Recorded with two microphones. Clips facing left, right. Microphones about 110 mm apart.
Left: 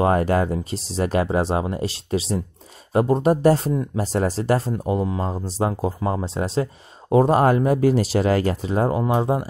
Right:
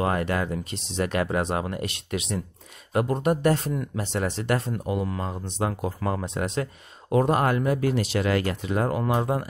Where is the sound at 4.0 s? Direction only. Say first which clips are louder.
Left 6 dB; 35° left (ahead or behind).